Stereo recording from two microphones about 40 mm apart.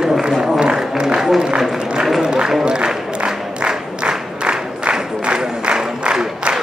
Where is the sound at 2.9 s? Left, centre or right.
Centre.